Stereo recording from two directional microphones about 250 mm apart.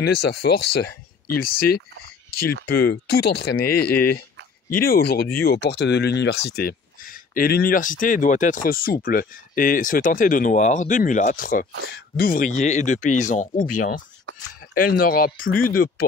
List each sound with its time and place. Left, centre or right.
0.0 s speech: left
4.8 s speech: left
14.3 s a sound: right
14.7 s speech: left